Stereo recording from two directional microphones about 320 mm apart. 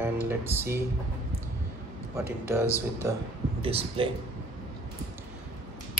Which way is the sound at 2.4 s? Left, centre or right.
Centre.